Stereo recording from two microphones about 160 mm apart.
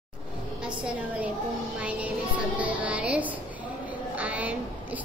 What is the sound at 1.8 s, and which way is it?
Music, 10° right (ahead or behind).